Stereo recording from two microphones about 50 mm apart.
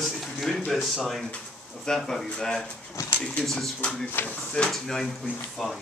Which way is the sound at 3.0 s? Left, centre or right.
Left.